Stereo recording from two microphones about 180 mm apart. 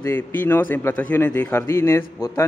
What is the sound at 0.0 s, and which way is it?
Speech, 10° left (ahead or behind).